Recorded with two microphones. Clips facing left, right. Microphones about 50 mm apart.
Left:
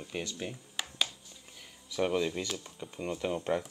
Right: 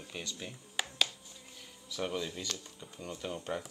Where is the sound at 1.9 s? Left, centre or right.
Centre.